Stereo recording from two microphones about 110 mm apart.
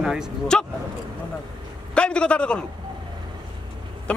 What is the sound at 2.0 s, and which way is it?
Speech, 10° left (ahead or behind).